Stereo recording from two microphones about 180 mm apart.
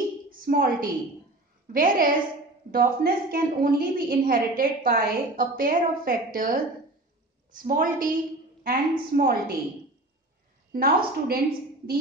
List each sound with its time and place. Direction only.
0.3 s a sound: 55° right (ahead or behind)
1.7 s a woman's voice: 50° right (ahead or behind)
10.7 s a woman's voice: 55° right (ahead or behind)